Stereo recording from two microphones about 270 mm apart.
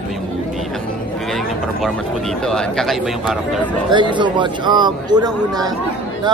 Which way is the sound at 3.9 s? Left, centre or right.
Centre.